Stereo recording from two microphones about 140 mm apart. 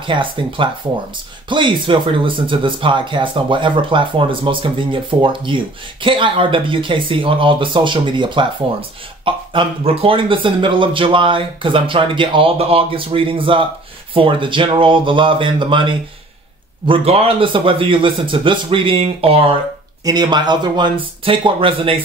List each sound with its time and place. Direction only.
0.0 s speech: 35° right (ahead or behind)
20.1 s speech: 30° right (ahead or behind)